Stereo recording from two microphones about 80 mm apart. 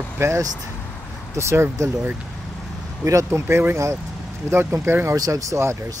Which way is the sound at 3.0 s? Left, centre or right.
Right.